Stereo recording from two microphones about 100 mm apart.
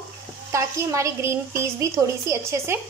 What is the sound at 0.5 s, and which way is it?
A woman's voice, 30° right (ahead or behind).